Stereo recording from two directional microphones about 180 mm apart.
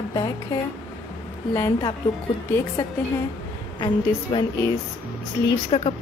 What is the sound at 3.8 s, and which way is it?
Speech, 30° left (ahead or behind).